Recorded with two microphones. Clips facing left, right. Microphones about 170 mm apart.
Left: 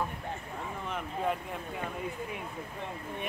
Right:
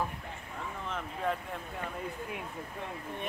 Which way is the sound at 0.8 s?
10° left (ahead or behind).